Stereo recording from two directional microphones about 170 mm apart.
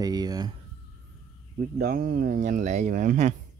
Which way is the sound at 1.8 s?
55° right (ahead or behind).